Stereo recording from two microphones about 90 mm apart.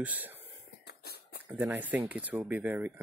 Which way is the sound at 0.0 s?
20° right (ahead or behind).